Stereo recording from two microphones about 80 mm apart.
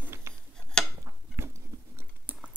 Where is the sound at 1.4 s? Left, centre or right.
Right.